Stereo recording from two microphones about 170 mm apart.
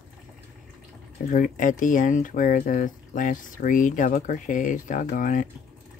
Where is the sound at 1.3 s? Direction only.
50° left (ahead or behind).